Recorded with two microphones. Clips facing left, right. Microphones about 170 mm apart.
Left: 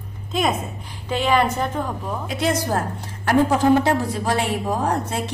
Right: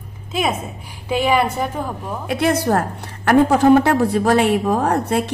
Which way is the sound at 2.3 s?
60° right (ahead or behind).